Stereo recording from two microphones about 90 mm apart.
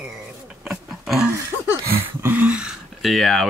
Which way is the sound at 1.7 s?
25° right (ahead or behind).